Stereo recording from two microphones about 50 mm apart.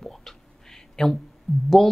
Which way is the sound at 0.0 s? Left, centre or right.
Centre.